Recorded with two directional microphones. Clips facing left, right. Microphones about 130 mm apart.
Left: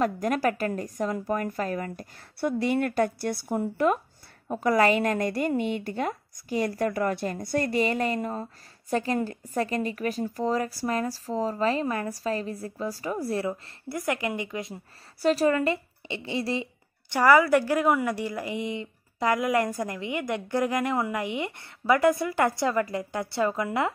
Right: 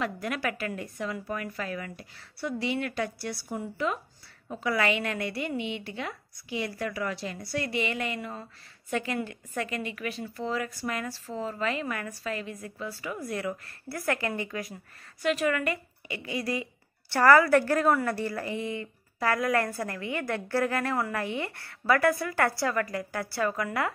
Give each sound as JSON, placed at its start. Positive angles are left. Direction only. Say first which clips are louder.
{"t": 0.0, "sound": "a woman's voice", "louder": "left 6 dB", "side_deg": 40}
{"t": 15.2, "sound": "a woman's voice", "louder": "left 4 dB", "side_deg": 35}
{"t": 17.1, "sound": "a woman's voice", "louder": "even", "side_deg": 15}